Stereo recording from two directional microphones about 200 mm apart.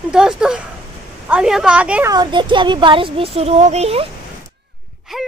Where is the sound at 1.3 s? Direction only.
5° right (ahead or behind).